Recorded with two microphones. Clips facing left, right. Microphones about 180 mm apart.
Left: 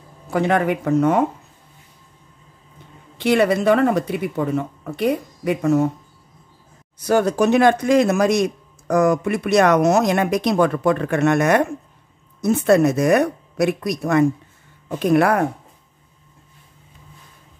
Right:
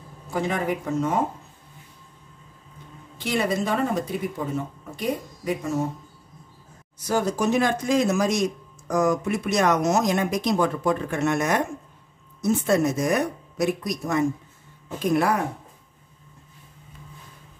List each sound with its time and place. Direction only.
0.3 s speech: 65° left (ahead or behind)
3.2 s speech: 70° left (ahead or behind)
7.1 s a man's voice: 65° left (ahead or behind)